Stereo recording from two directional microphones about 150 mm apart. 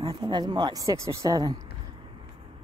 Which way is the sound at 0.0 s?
25° right (ahead or behind).